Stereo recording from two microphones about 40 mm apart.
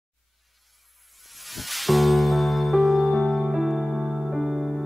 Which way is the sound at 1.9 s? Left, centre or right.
Centre.